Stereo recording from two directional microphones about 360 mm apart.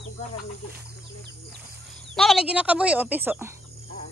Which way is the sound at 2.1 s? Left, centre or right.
Centre.